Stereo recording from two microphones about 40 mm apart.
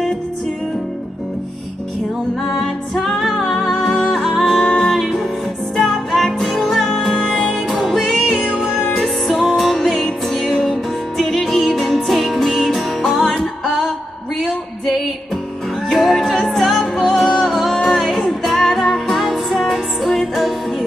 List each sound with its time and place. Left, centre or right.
2.5 s music: centre
4.9 s music: centre
13.7 s a sound: centre
16.0 s music: centre
16.8 s music: centre